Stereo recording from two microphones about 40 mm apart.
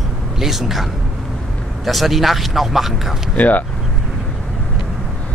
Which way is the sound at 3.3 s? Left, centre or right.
Left.